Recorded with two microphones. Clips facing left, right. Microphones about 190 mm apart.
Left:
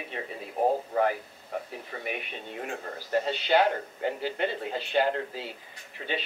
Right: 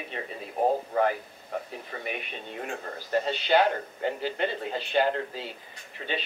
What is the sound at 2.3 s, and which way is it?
A man's voice, 20° left (ahead or behind).